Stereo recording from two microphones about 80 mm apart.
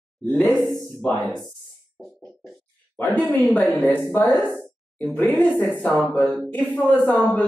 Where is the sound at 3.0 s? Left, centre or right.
Left.